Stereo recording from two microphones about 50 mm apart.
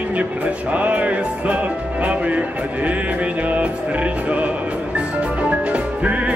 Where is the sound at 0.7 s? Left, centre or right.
Right.